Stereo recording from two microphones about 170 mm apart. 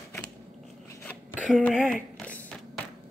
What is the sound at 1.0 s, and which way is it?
Zipper, 10° left (ahead or behind).